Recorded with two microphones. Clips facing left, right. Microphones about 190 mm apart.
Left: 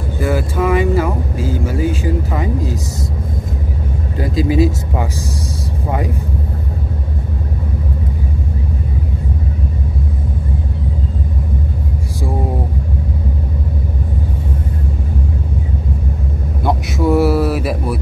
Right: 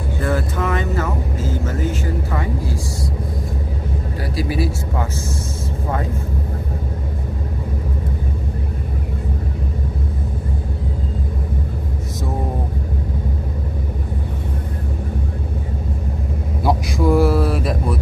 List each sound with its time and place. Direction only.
0.2 s speech: 10° left (ahead or behind)
4.2 s speech: 20° left (ahead or behind)
16.6 s a sound: 5° left (ahead or behind)